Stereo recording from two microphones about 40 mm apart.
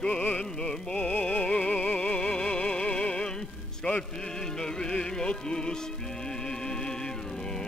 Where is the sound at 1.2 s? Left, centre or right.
Left.